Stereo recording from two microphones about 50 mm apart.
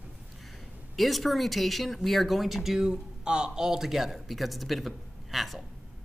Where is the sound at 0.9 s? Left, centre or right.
Centre.